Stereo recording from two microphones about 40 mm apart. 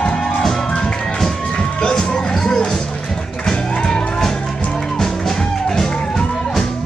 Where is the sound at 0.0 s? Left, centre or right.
Left.